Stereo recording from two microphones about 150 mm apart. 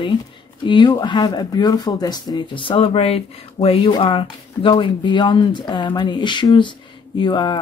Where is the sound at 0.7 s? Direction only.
30° left (ahead or behind).